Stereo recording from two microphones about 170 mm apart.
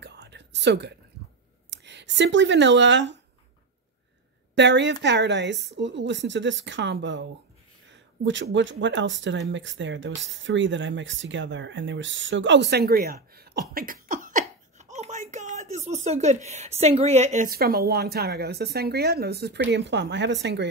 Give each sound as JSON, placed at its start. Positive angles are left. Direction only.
{"t": 0.0, "sound": "whispering", "side_deg": -85}
{"t": 1.7, "sound": "speech", "side_deg": -90}
{"t": 4.6, "sound": "speech", "side_deg": -90}
{"t": 14.0, "sound": "speech", "side_deg": -50}